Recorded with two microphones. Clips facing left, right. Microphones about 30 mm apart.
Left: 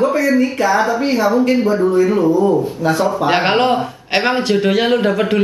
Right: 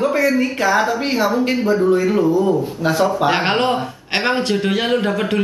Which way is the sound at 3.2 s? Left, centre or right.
Centre.